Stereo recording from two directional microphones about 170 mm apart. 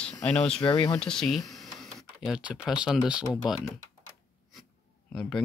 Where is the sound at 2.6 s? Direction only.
5° right (ahead or behind).